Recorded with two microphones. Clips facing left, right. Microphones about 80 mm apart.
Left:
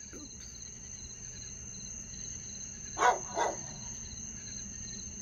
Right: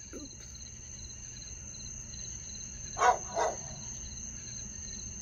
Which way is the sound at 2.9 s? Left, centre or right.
Centre.